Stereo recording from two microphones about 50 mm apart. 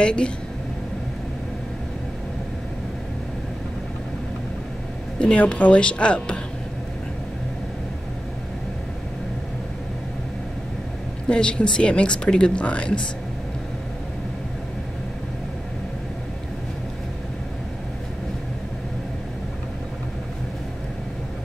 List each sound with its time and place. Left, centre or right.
0.0 s speech: centre
5.2 s speech: left
11.2 s speech: centre